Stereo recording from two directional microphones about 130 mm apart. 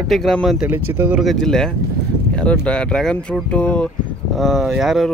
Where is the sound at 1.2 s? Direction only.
5° left (ahead or behind).